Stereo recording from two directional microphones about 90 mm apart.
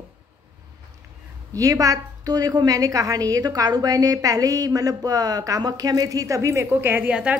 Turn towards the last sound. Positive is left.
turn(degrees=-10)  # may be behind; listen again after turning